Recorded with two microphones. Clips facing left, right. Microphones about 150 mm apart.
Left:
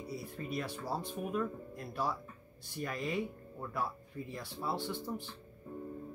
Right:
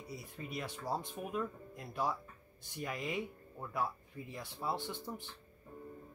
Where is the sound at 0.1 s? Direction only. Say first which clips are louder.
Left 4 dB; 20° right (ahead or behind).